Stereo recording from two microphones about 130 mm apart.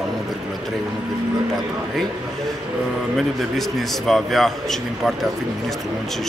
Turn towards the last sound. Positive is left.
turn(degrees=0)  # may be behind; listen again after turning